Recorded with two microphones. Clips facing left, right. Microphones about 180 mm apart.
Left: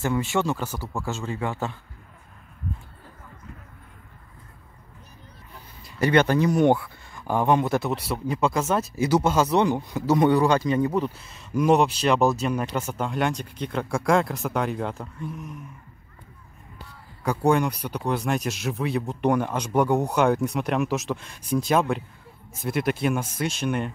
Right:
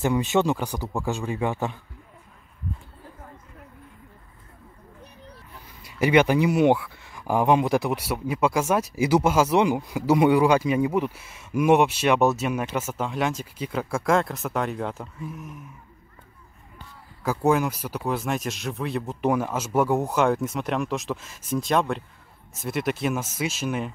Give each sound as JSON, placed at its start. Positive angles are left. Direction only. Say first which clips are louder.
{"t": 0.0, "sound": "a man's voice", "louder": "right 3 dB", "side_deg": -20}
{"t": 5.9, "sound": "a man's voice", "louder": "right 1 dB", "side_deg": -10}
{"t": 17.2, "sound": "speech", "louder": "even", "side_deg": -5}